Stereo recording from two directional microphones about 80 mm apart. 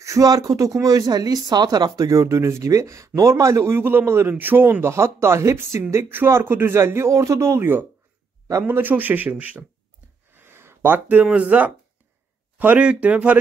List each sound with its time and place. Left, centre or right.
0.0 s a man's voice: right
10.3 s a sound: right
11.2 s a man's voice: centre